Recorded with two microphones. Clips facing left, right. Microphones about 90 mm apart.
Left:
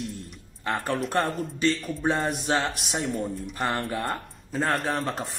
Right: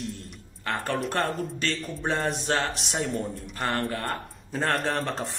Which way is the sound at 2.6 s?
Centre (ahead or behind).